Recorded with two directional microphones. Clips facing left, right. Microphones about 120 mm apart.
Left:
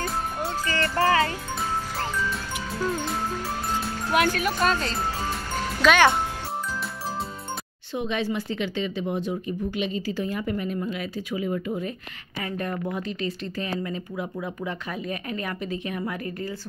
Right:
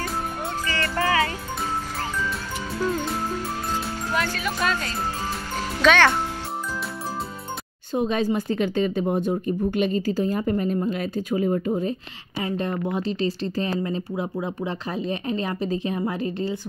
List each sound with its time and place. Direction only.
0.9 s music: 30° left (ahead or behind)
4.1 s speech: 65° left (ahead or behind)
4.6 s speech: 35° left (ahead or behind)
5.8 s a child's voice: 5° left (ahead or behind)
7.9 s speech: 40° right (ahead or behind)
12.4 s speech: 25° right (ahead or behind)